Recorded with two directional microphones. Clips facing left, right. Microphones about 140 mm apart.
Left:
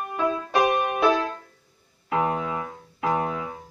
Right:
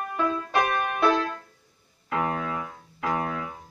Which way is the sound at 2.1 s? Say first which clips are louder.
Left 3 dB; 20° left (ahead or behind).